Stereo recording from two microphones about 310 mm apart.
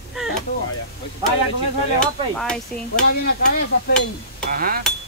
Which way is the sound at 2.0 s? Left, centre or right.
Centre.